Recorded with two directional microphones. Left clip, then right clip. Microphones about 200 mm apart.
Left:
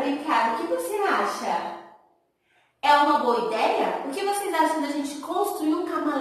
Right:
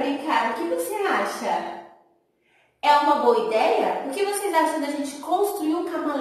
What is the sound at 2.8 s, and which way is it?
A woman's voice, centre (ahead or behind).